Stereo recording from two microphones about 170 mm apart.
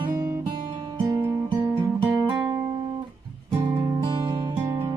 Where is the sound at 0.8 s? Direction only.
30° right (ahead or behind).